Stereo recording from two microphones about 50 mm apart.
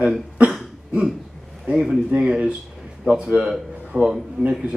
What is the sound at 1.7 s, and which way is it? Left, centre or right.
Speech, centre.